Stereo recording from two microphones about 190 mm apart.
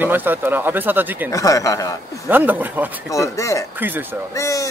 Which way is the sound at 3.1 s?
15° left (ahead or behind).